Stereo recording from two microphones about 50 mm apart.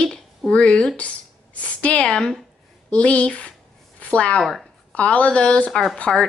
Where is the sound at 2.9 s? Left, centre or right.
Left.